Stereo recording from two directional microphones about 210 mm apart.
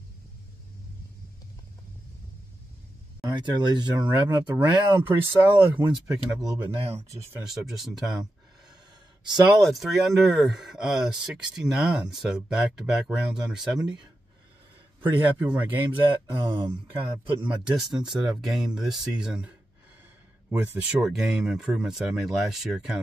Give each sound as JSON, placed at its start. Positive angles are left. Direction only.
{"t": 3.3, "sound": "speech", "side_deg": -20}
{"t": 7.4, "sound": "speech", "side_deg": 0}
{"t": 9.6, "sound": "speech", "side_deg": 0}
{"t": 13.7, "sound": "speech", "side_deg": -20}
{"t": 15.0, "sound": "speech", "side_deg": -10}
{"t": 16.0, "sound": "speech", "side_deg": -20}
{"t": 17.4, "sound": "speech", "side_deg": -5}